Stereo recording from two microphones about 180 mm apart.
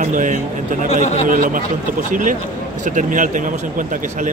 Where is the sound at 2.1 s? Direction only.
50° right (ahead or behind).